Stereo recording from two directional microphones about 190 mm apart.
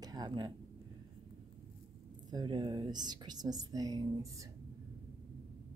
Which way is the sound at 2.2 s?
20° right (ahead or behind).